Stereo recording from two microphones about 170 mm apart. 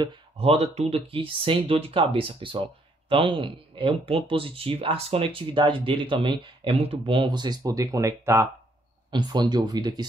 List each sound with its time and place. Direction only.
0.0 s speech: 35° right (ahead or behind)